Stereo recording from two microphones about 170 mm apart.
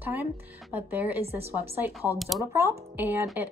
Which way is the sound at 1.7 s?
10° right (ahead or behind).